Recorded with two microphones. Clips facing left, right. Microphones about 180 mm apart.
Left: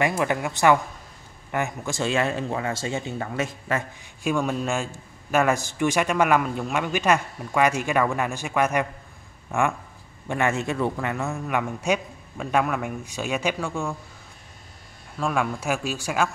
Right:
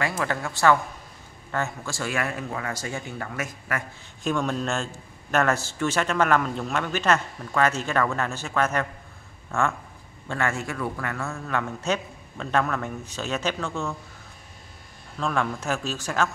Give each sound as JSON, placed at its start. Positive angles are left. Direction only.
{"t": 0.0, "sound": "a man's voice", "side_deg": 15}
{"t": 4.2, "sound": "a man's voice", "side_deg": 10}
{"t": 15.1, "sound": "a man's voice", "side_deg": 10}